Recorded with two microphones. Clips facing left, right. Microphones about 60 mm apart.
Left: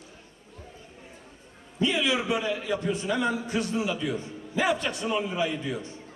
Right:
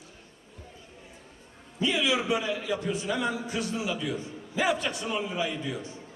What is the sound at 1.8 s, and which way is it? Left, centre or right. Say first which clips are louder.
A man's voice: left 1 dB; centre.